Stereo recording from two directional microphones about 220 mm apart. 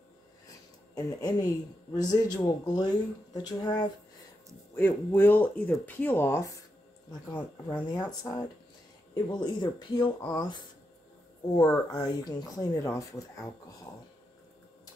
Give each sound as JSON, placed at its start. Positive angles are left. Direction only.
{"t": 0.9, "sound": "speech", "side_deg": 15}
{"t": 7.9, "sound": "speech", "side_deg": 20}